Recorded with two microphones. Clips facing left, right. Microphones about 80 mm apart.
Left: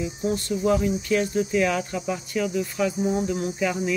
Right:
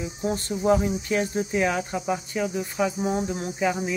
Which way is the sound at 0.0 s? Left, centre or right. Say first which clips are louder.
Left 2 dB; right.